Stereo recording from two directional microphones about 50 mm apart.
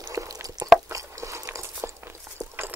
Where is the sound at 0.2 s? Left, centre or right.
Right.